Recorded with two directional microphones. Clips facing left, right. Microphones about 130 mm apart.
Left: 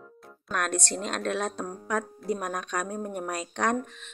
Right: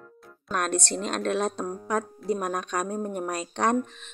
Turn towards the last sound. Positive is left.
turn(degrees=-30)  # may be behind; listen again after turning